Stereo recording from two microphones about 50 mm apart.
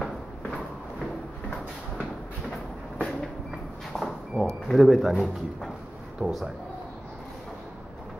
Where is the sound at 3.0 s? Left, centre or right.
Centre.